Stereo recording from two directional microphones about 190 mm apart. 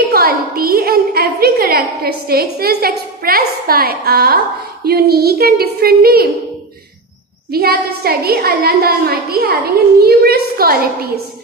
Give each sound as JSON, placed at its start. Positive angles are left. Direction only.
{"t": 0.1, "sound": "a woman's voice", "side_deg": -50}
{"t": 7.5, "sound": "a woman's voice", "side_deg": -55}